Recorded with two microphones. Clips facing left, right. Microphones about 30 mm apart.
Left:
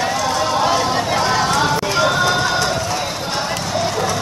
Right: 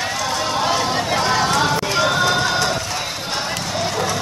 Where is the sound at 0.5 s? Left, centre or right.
Centre.